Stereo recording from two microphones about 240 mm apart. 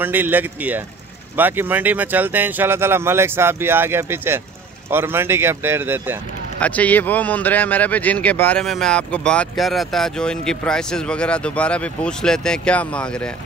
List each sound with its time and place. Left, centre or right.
0.0 s speech: centre
6.6 s a man's voice: centre